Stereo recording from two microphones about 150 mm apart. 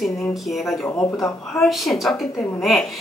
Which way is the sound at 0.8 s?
20° left (ahead or behind).